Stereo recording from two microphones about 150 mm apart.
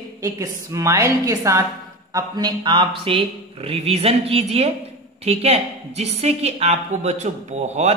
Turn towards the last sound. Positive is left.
turn(degrees=-50)  # may be behind; listen again after turning